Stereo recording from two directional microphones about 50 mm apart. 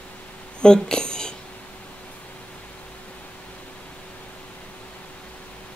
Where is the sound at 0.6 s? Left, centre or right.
Centre.